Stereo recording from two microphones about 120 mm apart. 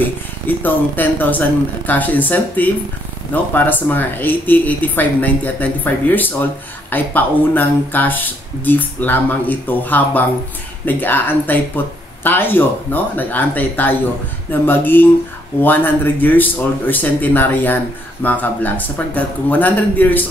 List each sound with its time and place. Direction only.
0.5 s speech: 15° left (ahead or behind)